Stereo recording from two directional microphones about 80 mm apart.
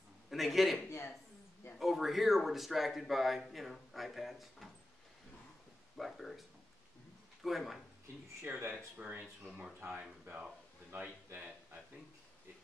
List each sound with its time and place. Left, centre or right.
0.3 s a man's voice: centre
0.8 s a sound: left
1.8 s speech: centre
5.9 s speech: centre
7.4 s speech: centre
8.4 s speech: right
8.7 s speech: centre
10.9 s a sound: right